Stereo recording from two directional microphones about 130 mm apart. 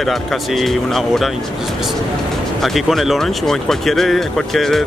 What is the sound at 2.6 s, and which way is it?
Speech, centre (ahead or behind).